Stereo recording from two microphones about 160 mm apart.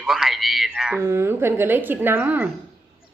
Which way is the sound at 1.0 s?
15° right (ahead or behind).